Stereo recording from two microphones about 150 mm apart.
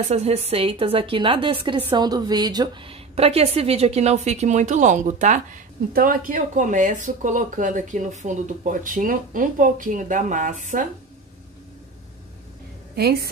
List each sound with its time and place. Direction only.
0.1 s a woman's voice: 45° right (ahead or behind); by 10.9 s 60° right (ahead or behind)
12.9 s a woman's voice: 90° right